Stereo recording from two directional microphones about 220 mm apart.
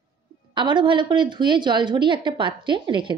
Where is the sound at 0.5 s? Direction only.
20° right (ahead or behind).